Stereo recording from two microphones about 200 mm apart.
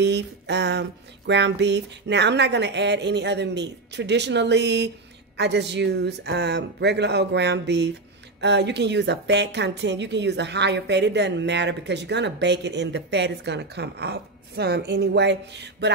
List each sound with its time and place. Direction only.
0.0 s a woman's voice: 60° right (ahead or behind)